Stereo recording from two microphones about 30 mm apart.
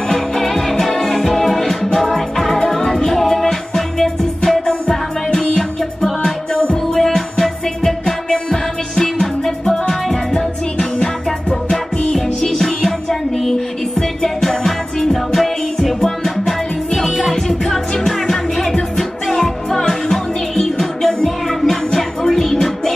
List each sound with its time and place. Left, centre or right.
0.1 s music: centre
5.6 s music: centre
12.1 s music: centre